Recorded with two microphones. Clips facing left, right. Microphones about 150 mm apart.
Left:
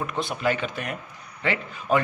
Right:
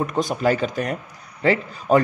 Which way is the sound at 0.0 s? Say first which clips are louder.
Right 5 dB; 40° right (ahead or behind).